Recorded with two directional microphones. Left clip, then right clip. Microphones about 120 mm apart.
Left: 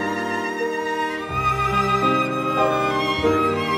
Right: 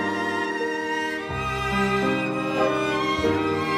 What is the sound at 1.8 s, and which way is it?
Music, 5° right (ahead or behind).